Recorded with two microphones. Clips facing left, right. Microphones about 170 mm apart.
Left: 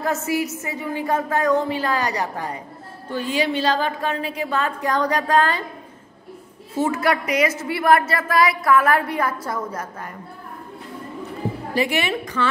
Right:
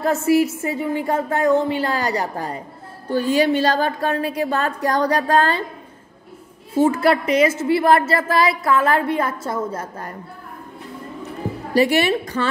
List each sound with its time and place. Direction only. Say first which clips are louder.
0.0 s a woman's voice: right 6 dB; 30° right (ahead or behind)
3.1 s a woman's voice: right 6 dB; 45° right (ahead or behind)
6.8 s a woman's voice: right 4 dB; 30° right (ahead or behind)
11.7 s a woman's voice: right 6 dB; 35° right (ahead or behind)